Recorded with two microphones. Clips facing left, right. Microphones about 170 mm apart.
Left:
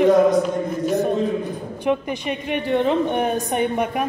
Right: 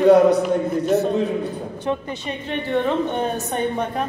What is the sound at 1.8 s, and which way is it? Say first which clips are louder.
A woman's voice: left 4 dB; 15° left (ahead or behind).